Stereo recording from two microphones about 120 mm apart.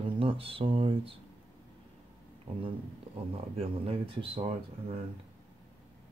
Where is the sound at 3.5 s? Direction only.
50° right (ahead or behind).